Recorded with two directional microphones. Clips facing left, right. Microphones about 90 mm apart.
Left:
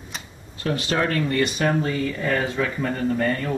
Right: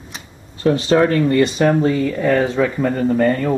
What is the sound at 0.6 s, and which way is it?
Speech, 30° right (ahead or behind).